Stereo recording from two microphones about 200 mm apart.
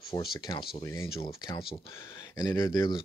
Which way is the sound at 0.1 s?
25° left (ahead or behind).